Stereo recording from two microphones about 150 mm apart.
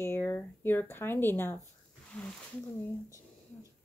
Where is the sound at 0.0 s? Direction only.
15° left (ahead or behind).